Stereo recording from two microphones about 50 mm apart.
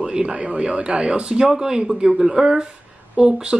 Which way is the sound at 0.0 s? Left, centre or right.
Centre.